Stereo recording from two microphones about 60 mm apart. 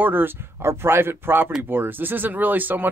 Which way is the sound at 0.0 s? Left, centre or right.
Right.